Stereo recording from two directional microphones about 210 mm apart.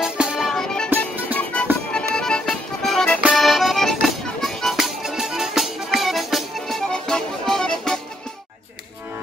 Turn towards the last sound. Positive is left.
turn(degrees=0)  # may be behind; listen again after turning